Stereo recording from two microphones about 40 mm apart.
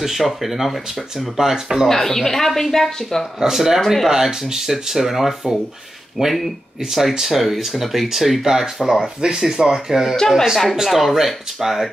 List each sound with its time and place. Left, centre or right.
0.0 s speech: centre
1.9 s speech: centre
3.3 s speech: centre
4.1 s speech: centre
10.8 s speech: centre